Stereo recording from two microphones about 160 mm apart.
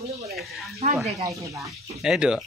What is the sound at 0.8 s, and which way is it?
Speech, 55° right (ahead or behind).